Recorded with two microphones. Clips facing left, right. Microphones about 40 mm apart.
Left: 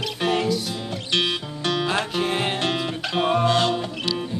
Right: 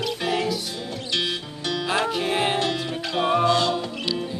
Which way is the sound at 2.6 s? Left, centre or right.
Left.